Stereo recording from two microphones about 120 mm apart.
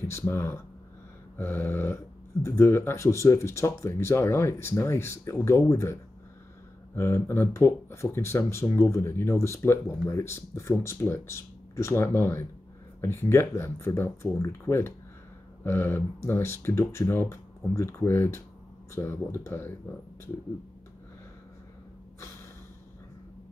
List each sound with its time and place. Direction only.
0.1 s speech: 20° left (ahead or behind)
7.0 s speech: 20° left (ahead or behind)